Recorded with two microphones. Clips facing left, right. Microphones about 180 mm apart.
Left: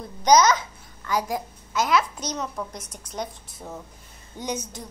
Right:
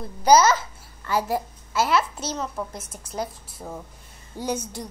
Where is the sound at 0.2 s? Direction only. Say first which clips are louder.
Right 1 dB; 5° right (ahead or behind).